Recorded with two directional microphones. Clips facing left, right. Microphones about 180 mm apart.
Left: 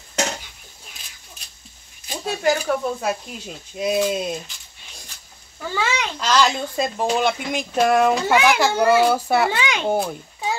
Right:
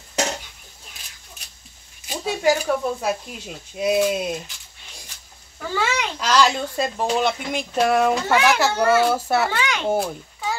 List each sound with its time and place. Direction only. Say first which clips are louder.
2.0 s a child's voice: right 1 dB; 5° right (ahead or behind)
5.6 s a child's voice: even; centre (ahead or behind)
8.7 s a child's voice: left 3 dB; 10° left (ahead or behind)
9.0 s a child's voice: left 2 dB; centre (ahead or behind)
9.5 s a child's voice: left 1 dB; 15° left (ahead or behind)
9.8 s a child's voice: even; 5° right (ahead or behind)